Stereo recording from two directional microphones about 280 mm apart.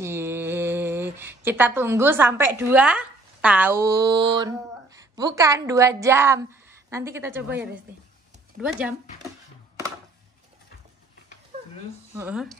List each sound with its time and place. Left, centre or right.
0.0 s speech: centre
11.5 s a sound: right
12.2 s speech: centre